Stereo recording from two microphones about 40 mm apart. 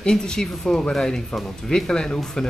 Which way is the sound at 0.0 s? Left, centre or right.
Centre.